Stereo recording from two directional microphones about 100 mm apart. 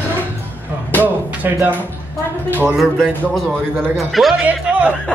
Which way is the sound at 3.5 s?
20° right (ahead or behind).